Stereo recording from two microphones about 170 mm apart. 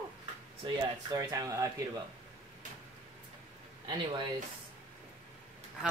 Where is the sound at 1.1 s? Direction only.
20° right (ahead or behind).